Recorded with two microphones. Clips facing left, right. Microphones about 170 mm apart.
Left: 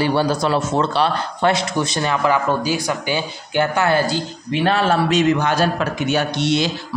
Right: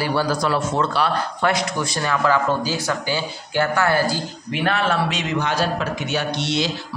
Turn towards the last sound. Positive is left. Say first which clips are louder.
# left 4 dB
turn(degrees=50)  # may be behind; listen again after turning